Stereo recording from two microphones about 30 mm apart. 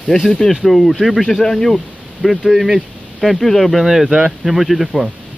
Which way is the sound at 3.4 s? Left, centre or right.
Centre.